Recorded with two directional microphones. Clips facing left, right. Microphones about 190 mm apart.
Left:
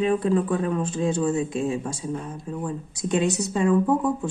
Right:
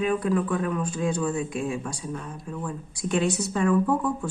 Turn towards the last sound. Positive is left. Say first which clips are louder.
# left 2 dB
turn(degrees=20)  # may be behind; listen again after turning